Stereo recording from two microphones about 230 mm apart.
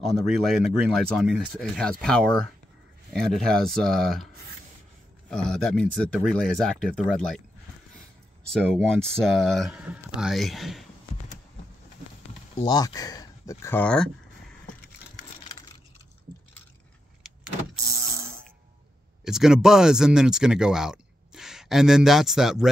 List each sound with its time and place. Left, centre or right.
0.0 s speech: centre
5.3 s speech: centre
8.5 s speech: centre
12.5 s speech: centre
19.2 s speech: centre